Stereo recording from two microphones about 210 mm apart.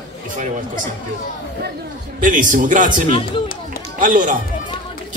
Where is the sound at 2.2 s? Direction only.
40° right (ahead or behind).